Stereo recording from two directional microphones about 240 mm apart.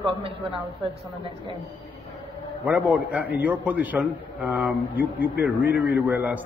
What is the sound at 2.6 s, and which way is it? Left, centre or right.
A man's voice, centre.